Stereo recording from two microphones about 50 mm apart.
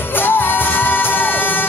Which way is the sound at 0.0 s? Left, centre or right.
Left.